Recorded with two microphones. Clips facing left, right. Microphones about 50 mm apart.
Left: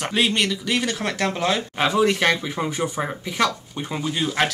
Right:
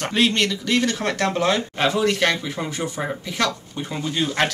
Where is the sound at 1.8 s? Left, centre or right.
Centre.